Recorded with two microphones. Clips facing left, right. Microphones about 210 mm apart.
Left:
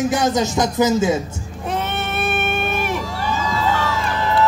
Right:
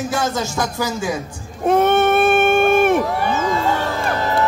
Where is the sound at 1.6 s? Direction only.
50° right (ahead or behind).